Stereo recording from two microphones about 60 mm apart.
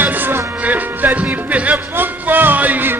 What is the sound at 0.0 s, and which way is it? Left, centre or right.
Music, right.